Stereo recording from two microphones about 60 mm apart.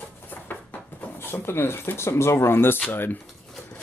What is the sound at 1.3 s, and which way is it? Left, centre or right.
Speech, left.